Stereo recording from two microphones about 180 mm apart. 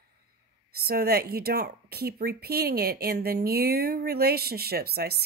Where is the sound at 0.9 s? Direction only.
60° right (ahead or behind).